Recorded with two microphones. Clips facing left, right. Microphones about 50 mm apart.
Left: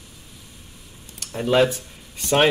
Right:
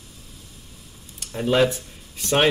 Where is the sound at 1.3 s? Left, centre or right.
Centre.